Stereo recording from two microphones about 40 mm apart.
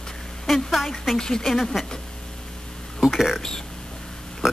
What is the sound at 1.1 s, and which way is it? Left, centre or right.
Speech, centre.